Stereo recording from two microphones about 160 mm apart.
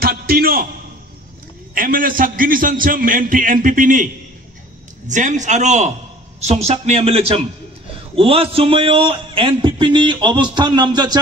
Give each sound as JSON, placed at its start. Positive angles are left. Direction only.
{"t": 0.0, "sound": "a man's voice", "side_deg": -70}
{"t": 1.8, "sound": "a man's voice", "side_deg": -60}